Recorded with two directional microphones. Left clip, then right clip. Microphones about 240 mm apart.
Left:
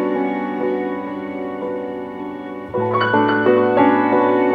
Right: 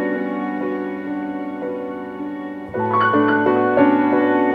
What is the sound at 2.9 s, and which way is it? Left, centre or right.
Music, centre.